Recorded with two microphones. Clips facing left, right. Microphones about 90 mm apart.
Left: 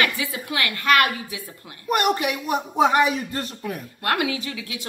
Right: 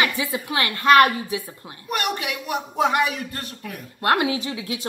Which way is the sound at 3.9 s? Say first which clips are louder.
Right 4 dB; 30° right (ahead or behind).